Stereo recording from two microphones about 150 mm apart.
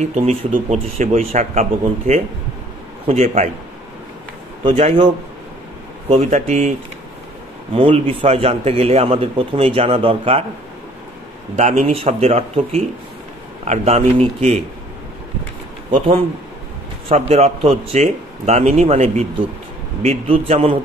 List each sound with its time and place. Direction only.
0.0 s speech: 45° right (ahead or behind)
4.6 s a man's voice: 40° right (ahead or behind)
6.3 s speech: 50° right (ahead or behind)
7.7 s a man's voice: 35° right (ahead or behind)
11.5 s speech: 50° right (ahead or behind)
17.1 s speech: 45° right (ahead or behind)